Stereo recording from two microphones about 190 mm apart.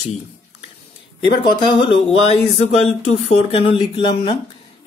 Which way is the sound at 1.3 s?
25° left (ahead or behind).